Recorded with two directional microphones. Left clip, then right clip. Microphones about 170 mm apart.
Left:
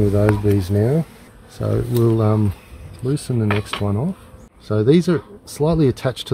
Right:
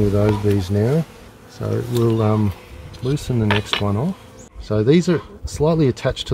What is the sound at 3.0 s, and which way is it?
Speech, 20° left (ahead or behind).